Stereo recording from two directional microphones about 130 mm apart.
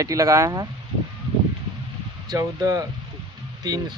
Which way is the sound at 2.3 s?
30° right (ahead or behind).